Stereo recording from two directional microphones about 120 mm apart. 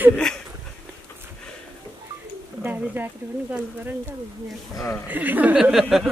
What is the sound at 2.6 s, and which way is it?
Bird, 15° right (ahead or behind).